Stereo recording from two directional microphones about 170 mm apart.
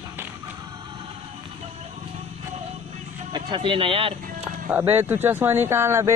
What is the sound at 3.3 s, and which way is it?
Speech, 30° right (ahead or behind).